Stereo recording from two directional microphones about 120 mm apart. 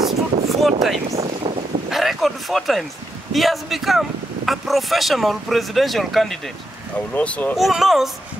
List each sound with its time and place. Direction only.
0.0 s a sound: centre (ahead or behind)
1.1 s speech: 55° right (ahead or behind)
1.9 s speech: centre (ahead or behind)
7.2 s speech: 10° left (ahead or behind)
7.5 s speech: centre (ahead or behind)